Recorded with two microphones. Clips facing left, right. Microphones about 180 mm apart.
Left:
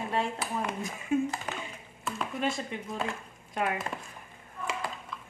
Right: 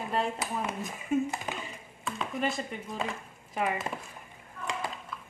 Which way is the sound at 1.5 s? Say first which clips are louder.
Even; 10° right (ahead or behind).